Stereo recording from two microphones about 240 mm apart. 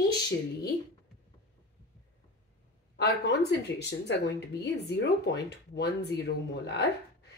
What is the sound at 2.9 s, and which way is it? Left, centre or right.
Speech, left.